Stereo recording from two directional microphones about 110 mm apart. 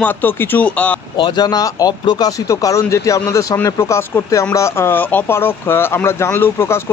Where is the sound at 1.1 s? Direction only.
45° left (ahead or behind).